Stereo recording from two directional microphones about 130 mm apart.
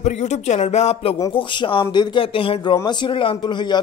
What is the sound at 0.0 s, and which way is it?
Speech, 60° left (ahead or behind).